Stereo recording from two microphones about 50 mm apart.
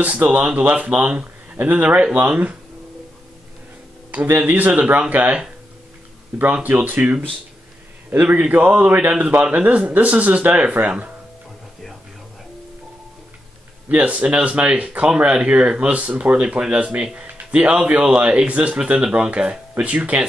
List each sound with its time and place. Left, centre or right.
0.0 s speech: right
4.1 s speech: right
6.5 s speech: right
13.8 s speech: right
19.4 s speech: centre
19.7 s speech: right